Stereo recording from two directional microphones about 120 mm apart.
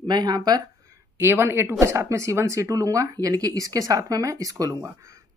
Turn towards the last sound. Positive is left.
turn(degrees=-25)  # may be behind; listen again after turning